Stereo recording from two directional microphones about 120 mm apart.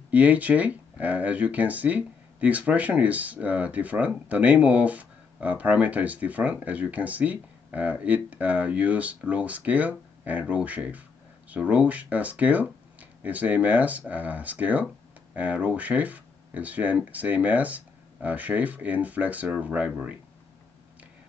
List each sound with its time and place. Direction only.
0.1 s speech: 10° right (ahead or behind)